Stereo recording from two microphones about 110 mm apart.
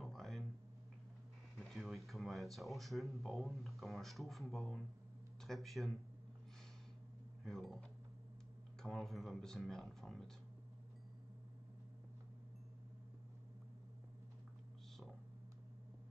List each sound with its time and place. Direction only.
0.0 s a sound: centre (ahead or behind)
1.6 s speech: centre (ahead or behind)
7.4 s speech: 5° left (ahead or behind)
8.8 s speech: centre (ahead or behind)